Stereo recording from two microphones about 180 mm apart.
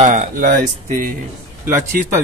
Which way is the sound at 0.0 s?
45° right (ahead or behind).